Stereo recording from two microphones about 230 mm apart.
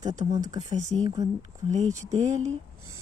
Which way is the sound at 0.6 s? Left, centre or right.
Right.